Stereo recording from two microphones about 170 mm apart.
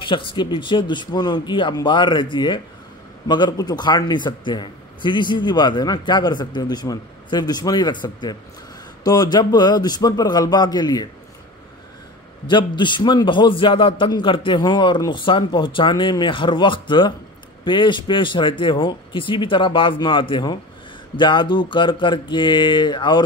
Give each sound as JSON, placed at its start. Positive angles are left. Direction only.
{"t": 0.0, "sound": "a man's voice", "side_deg": 30}
{"t": 12.4, "sound": "a man's voice", "side_deg": 30}